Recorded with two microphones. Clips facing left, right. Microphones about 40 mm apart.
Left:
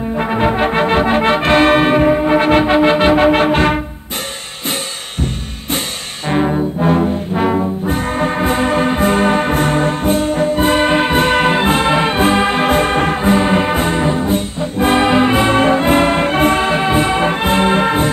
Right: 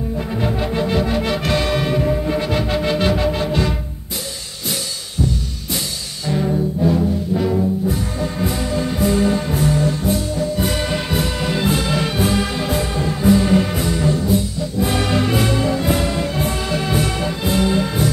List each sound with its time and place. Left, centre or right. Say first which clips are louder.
0.2 s brass instrument: left 9 dB; left
3.3 s music: left 8 dB; left
6.2 s brass instrument: left 4 dB; left
7.3 s music: left 4 dB; left